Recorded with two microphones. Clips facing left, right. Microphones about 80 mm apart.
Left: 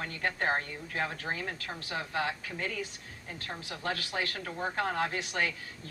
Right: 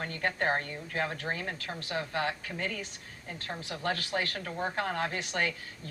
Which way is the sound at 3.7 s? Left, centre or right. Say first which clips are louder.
Right 3 dB; right.